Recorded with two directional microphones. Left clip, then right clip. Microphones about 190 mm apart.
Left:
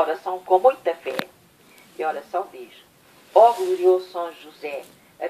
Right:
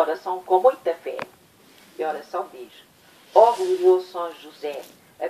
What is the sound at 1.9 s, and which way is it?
Speech, 50° right (ahead or behind).